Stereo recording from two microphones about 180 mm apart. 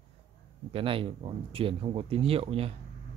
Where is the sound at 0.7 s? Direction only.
30° right (ahead or behind).